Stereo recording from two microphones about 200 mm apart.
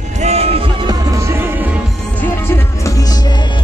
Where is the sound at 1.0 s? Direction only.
15° right (ahead or behind).